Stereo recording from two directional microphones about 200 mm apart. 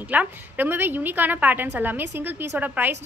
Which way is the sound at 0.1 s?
10° right (ahead or behind).